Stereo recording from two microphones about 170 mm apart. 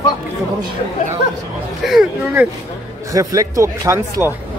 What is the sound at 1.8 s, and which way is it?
Speech, 5° right (ahead or behind).